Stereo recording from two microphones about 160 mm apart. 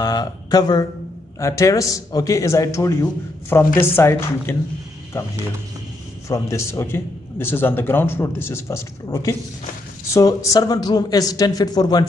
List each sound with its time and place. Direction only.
0.0 s a man's voice: 25° left (ahead or behind)